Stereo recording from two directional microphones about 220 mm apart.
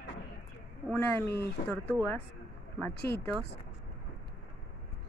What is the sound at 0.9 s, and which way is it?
Speech, 10° left (ahead or behind).